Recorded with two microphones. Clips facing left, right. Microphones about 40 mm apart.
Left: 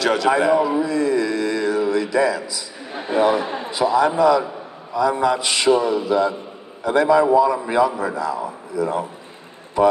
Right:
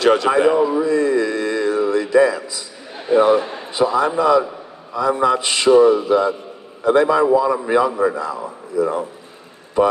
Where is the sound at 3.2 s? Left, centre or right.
Right.